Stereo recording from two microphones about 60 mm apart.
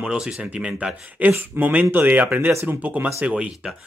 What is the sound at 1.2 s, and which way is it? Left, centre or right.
Speech, right.